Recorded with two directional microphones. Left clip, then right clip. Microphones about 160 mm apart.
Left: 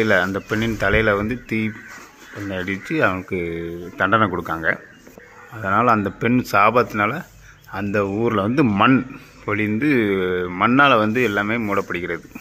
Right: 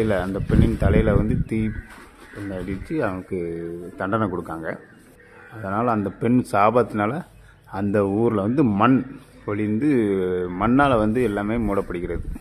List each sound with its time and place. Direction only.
0.0 s speech: 10° right (ahead or behind)
2.5 s speech: 5° right (ahead or behind)